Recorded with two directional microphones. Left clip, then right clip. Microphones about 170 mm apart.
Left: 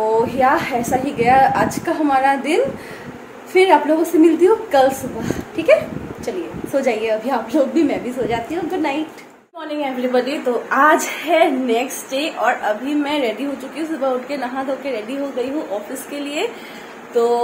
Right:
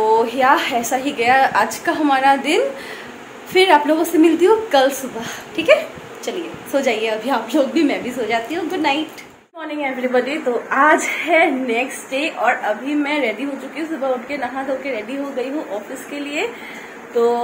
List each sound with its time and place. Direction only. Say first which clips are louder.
0.1 s a woman's voice: right 1 dB; centre (ahead or behind)
9.8 s a woman's voice: even; 15° left (ahead or behind)